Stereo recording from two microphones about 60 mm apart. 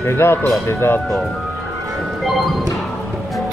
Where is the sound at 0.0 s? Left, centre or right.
Left.